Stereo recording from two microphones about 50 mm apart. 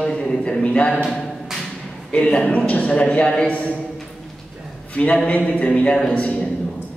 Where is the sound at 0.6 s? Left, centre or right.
Left.